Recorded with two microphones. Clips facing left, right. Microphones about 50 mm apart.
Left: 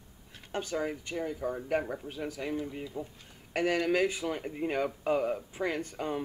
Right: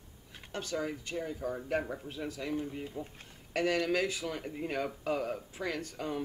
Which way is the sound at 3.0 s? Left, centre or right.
Left.